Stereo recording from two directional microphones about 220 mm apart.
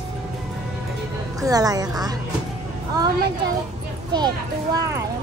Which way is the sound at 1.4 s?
15° right (ahead or behind).